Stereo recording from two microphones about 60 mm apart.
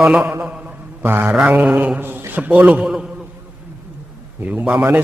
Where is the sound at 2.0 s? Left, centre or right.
Right.